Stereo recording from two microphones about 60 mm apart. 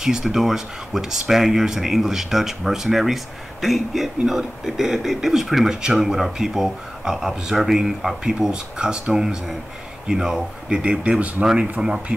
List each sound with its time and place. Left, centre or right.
0.0 s speech: centre